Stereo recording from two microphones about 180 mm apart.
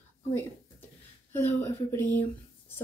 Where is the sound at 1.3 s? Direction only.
15° left (ahead or behind).